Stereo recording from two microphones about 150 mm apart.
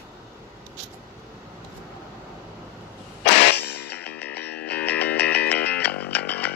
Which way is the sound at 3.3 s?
90° left.